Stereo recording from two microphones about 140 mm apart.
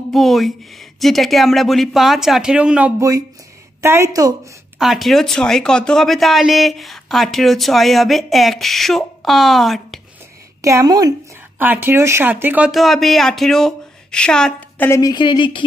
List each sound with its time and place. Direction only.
0.1 s speech: centre (ahead or behind)
3.0 s a woman's voice: 25° right (ahead or behind)
4.7 s speech: centre (ahead or behind)
10.6 s a woman's voice: 20° right (ahead or behind)
11.5 s speech: 15° right (ahead or behind); by 14.9 s 5° left (ahead or behind)
14.9 s a woman's voice: 25° left (ahead or behind)